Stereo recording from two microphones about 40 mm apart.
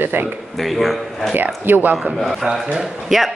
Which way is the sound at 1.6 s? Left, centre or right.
Right.